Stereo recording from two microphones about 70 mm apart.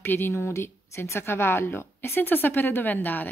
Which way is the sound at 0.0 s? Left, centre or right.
Left.